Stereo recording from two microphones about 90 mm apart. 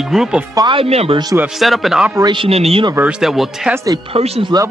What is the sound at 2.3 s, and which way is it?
Music, 85° right.